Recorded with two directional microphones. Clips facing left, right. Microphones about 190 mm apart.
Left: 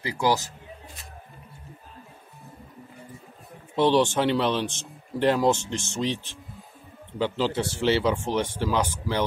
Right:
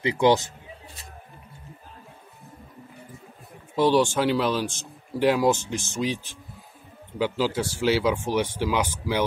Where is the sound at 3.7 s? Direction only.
5° right (ahead or behind).